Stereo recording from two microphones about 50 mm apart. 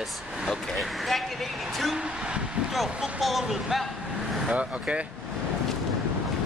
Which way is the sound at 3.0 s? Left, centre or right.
Centre.